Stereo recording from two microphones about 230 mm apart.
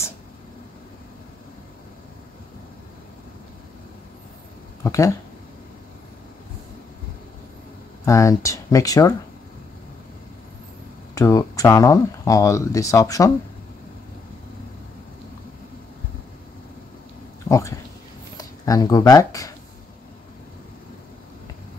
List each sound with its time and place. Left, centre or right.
4.8 s speech: centre
8.0 s speech: centre
11.1 s speech: centre
17.5 s speech: centre